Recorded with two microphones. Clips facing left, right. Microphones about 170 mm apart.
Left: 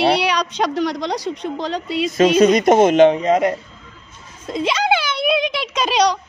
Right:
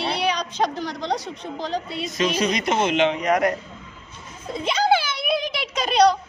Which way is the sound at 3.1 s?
25° left (ahead or behind).